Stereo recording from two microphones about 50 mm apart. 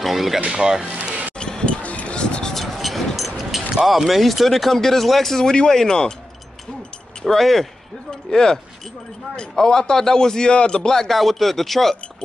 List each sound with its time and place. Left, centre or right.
0.0 s music: centre
0.5 s speech: centre
0.8 s music: right
1.4 s a sound: centre
2.5 s vehicle: centre
3.7 s speech: centre
7.2 s a man's voice: centre